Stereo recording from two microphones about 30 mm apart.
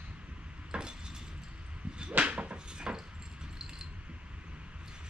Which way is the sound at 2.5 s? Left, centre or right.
Right.